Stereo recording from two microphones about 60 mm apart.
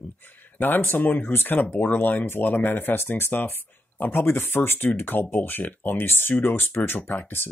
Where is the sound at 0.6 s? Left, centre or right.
Left.